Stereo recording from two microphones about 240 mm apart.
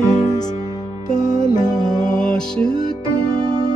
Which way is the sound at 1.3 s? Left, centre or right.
Left.